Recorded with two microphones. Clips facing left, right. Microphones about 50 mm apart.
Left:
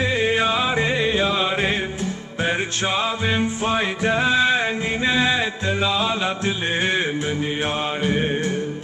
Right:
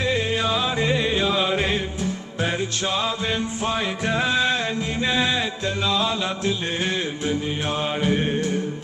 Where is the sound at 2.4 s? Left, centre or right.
Left.